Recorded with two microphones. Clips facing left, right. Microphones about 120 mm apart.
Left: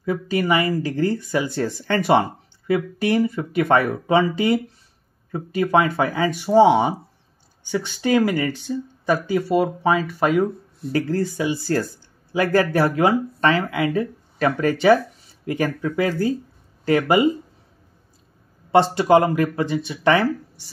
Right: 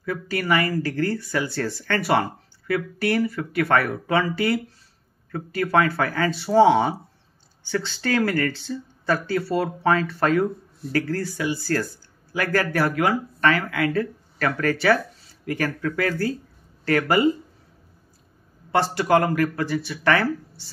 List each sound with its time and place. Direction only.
0.0 s speech: 20° left (ahead or behind)
18.7 s speech: 20° left (ahead or behind)